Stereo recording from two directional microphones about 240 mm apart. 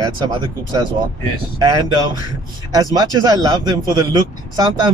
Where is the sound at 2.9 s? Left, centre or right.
Centre.